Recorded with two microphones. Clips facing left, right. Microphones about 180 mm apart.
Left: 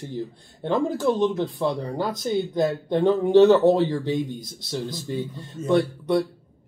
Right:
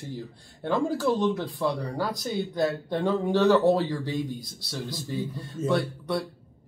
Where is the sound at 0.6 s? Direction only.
20° left (ahead or behind).